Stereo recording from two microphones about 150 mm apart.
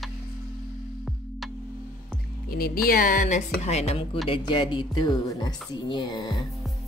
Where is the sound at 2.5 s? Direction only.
90° left.